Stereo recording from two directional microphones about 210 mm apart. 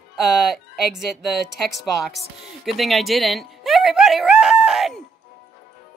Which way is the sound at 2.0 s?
Centre (ahead or behind).